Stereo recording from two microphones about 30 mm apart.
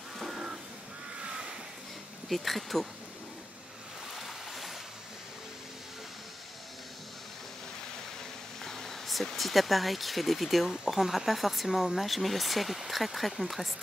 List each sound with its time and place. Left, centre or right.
1.2 s crow: right
2.2 s speech: centre
4.1 s boat: centre
8.6 s a sound: centre
9.4 s speech: centre